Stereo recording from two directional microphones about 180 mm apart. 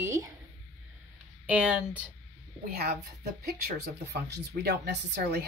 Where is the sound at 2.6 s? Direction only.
60° right (ahead or behind).